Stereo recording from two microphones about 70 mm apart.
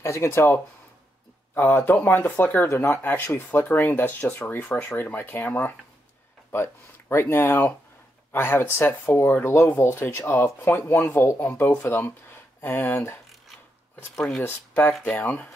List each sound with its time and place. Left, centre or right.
0.0 s speech: left
1.5 s speech: left
14.1 s speech: centre
15.0 s speech: left